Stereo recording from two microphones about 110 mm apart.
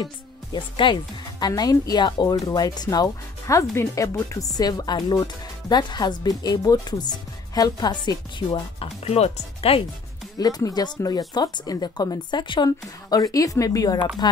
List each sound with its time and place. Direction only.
0.0 s speech: 45° left (ahead or behind)
8.5 s speech: 65° left (ahead or behind)
10.4 s speech: 35° left (ahead or behind)